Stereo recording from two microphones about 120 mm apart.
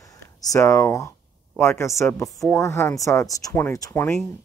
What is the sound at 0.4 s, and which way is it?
Speech, 25° left (ahead or behind).